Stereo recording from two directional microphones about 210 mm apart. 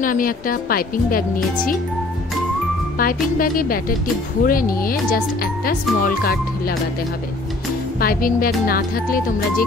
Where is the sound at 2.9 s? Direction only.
45° left (ahead or behind).